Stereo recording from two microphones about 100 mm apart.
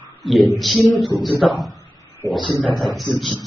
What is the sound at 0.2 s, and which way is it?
Speech, centre (ahead or behind).